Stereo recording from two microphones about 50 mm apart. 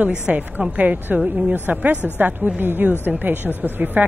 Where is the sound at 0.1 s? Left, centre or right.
Centre.